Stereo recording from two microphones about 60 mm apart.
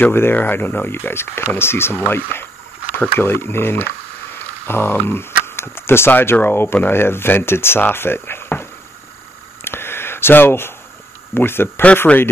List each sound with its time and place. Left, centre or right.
0.1 s speech: left
9.7 s a sound: left
11.3 s speech: left
12.1 s speech: left